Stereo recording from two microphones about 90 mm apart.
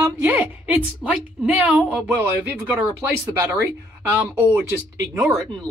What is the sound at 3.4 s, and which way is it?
Speech, 30° right (ahead or behind).